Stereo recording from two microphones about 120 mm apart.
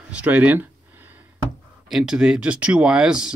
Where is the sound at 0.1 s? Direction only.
10° right (ahead or behind).